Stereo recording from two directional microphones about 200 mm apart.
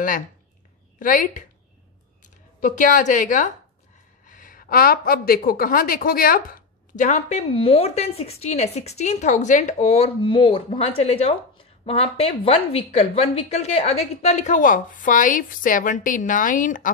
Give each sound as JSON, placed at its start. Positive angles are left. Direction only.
{"t": 0.9, "sound": "a woman's voice", "side_deg": 40}
{"t": 2.6, "sound": "a woman's voice", "side_deg": 40}